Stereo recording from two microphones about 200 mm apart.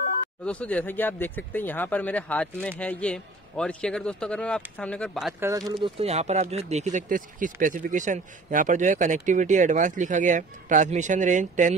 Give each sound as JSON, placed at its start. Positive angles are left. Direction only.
{"t": 0.5, "sound": "a man's voice", "side_deg": 5}
{"t": 5.5, "sound": "speech", "side_deg": -20}
{"t": 5.9, "sound": "speech", "side_deg": -35}